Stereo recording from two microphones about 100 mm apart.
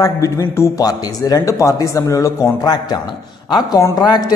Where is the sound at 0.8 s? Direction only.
40° left (ahead or behind).